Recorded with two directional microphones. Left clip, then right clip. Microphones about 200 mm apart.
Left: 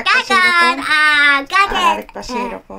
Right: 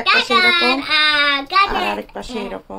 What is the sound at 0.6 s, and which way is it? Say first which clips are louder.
Child singing: left 3 dB; 40° left (ahead or behind).